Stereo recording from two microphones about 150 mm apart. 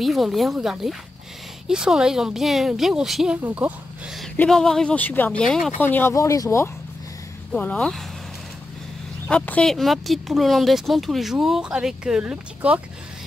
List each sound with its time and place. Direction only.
0.0 s speech: centre (ahead or behind)
4.4 s speech: 5° left (ahead or behind); by 6.7 s 20° left (ahead or behind)
7.5 s speech: 10° left (ahead or behind)
9.3 s speech: 5° left (ahead or behind); by 12.8 s 10° right (ahead or behind)